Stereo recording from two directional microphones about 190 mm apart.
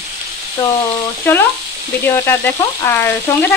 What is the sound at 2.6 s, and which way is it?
Speech, 15° left (ahead or behind).